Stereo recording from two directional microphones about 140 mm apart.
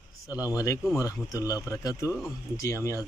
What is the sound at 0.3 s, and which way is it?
Speech, 25° left (ahead or behind).